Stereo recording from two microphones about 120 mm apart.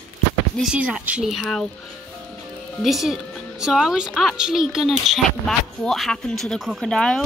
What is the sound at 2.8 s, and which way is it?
A woman's voice, centre (ahead or behind).